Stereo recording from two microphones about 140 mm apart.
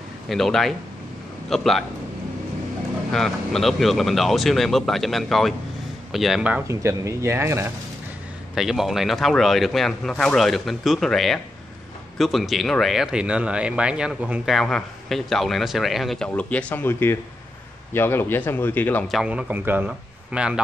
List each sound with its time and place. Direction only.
0.3 s speech: centre (ahead or behind)
3.1 s speech: centre (ahead or behind)
6.7 s speech: 20° right (ahead or behind)
8.5 s speech: centre (ahead or behind); by 19.0 s 15° left (ahead or behind)
19.0 s a man's voice: 5° right (ahead or behind)